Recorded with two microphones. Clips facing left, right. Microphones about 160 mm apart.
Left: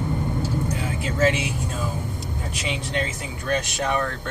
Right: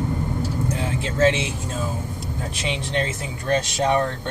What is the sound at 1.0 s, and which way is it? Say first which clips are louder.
Speech: right 2 dB; 25° right (ahead or behind).